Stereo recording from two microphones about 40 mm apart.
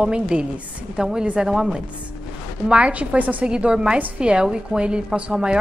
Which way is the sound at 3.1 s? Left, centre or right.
Right.